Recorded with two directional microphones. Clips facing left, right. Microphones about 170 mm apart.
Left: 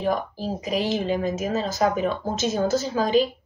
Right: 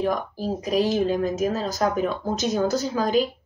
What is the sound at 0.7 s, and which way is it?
Speech, centre (ahead or behind).